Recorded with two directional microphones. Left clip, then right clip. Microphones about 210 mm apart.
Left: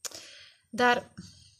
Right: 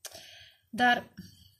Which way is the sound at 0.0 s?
45° left (ahead or behind).